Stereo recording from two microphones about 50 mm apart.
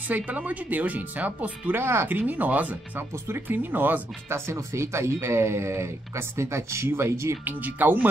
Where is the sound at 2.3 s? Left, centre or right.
Right.